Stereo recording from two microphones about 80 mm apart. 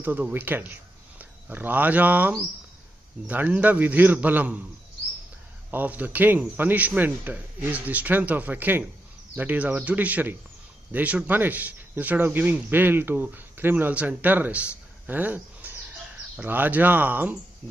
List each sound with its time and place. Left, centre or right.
0.0 s speech: right
5.7 s speech: right